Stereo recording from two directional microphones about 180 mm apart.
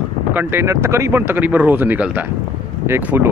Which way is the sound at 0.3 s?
10° right (ahead or behind).